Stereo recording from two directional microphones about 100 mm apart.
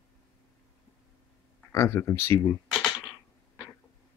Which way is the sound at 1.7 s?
25° left (ahead or behind).